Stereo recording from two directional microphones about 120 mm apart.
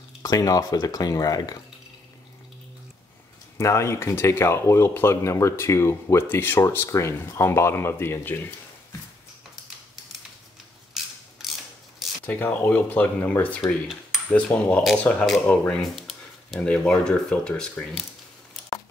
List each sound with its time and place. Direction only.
0.2 s speech: 30° left (ahead or behind)
3.5 s speech: 25° left (ahead or behind)
10.9 s mechanisms: 5° right (ahead or behind)
12.3 s speech: 15° left (ahead or behind)
16.0 s a sound: centre (ahead or behind)
16.5 s speech: 10° left (ahead or behind)